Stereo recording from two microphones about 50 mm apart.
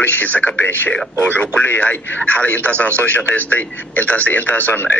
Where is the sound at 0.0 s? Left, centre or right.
Left.